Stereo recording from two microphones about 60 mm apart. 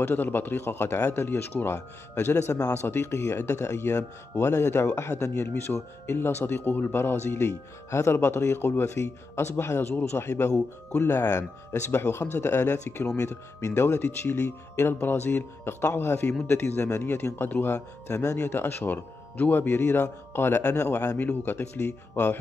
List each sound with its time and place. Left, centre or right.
0.0 s speech: left
11.2 s speech: left
11.9 s speech: left
13.2 s speech: left
18.1 s speech: left
18.5 s speech: left